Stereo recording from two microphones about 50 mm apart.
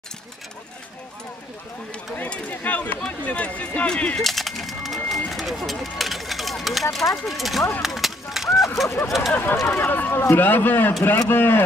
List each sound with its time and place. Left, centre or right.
2.5 s a sound: left
3.3 s speech: left
4.2 s speech: centre
7.8 s a sound: centre
8.8 s speech: left
9.3 s a man's voice: left